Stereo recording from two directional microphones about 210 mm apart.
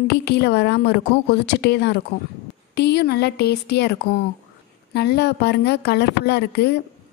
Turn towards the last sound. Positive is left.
turn(degrees=50)  # may be behind; listen again after turning